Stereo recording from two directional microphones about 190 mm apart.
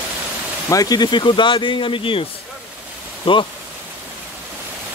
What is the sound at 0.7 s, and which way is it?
Speech, 20° left (ahead or behind).